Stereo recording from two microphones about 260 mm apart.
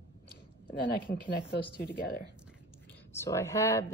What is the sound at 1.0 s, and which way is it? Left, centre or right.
Speech, centre.